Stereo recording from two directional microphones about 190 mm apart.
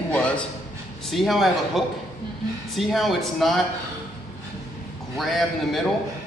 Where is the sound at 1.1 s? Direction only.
Centre (ahead or behind).